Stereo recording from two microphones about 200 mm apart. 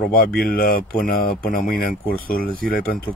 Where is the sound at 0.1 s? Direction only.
50° left (ahead or behind).